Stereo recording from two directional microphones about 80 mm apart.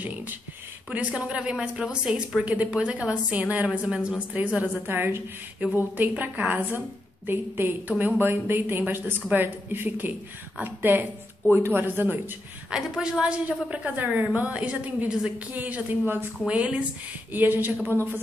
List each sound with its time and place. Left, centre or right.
0.8 s a woman's voice: centre
4.8 s speech: right
12.7 s a woman's voice: centre; by 18.2 s right